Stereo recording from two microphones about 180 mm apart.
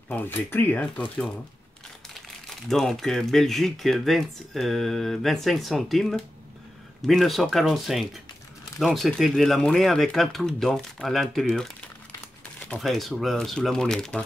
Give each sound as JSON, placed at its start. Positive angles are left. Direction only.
{"t": 0.1, "sound": "speech", "side_deg": 10}
{"t": 2.7, "sound": "speech", "side_deg": 0}